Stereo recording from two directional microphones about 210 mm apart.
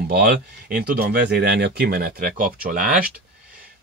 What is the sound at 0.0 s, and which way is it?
Speech, 45° right (ahead or behind).